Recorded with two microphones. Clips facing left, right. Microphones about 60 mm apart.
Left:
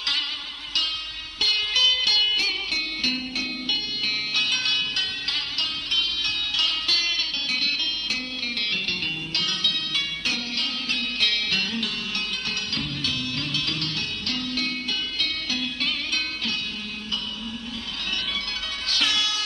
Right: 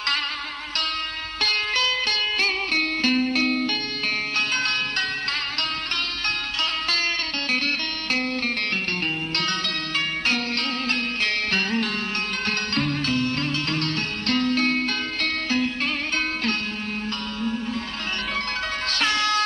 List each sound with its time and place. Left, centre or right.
1.4 s music: right
6.6 s music: right
9.3 s music: right
18.9 s music: right